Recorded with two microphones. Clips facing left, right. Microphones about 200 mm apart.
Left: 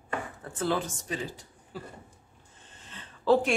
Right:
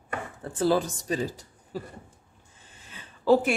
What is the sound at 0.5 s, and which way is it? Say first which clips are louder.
Speech: right 6 dB; 35° right (ahead or behind).